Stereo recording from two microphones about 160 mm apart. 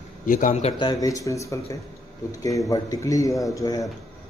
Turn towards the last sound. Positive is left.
turn(degrees=20)  # may be behind; listen again after turning